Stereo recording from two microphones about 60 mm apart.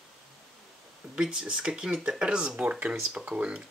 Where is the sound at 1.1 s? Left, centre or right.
Centre.